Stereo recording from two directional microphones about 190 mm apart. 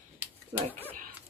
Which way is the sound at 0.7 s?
10° left (ahead or behind).